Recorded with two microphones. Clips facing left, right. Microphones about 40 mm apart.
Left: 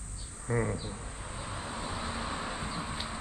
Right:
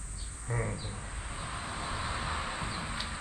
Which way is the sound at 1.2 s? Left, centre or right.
Centre.